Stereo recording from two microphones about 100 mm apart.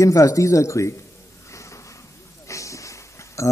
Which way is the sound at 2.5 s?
30° left (ahead or behind).